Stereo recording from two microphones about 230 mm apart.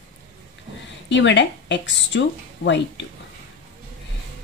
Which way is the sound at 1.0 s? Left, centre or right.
Left.